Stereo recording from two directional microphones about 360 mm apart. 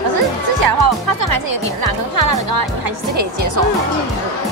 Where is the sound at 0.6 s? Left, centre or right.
Right.